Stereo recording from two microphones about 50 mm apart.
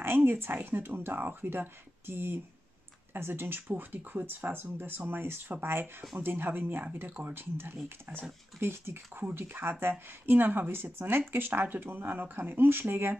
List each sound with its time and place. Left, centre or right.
0.0 s speech: right